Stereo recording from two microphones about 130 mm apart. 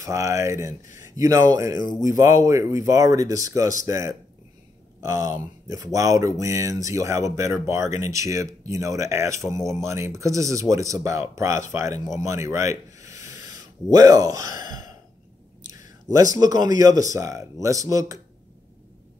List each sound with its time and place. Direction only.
0.0 s speech: 25° right (ahead or behind)
16.3 s speech: 30° right (ahead or behind)